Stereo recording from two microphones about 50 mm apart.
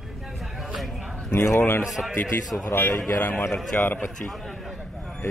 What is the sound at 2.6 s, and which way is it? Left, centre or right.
Speech, left.